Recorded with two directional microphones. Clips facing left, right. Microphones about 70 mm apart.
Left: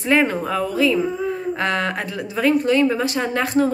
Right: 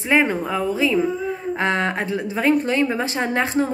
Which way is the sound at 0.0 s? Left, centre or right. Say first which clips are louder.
Left 1 dB; centre.